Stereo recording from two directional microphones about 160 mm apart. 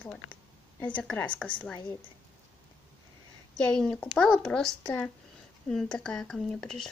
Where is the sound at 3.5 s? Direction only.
5° left (ahead or behind).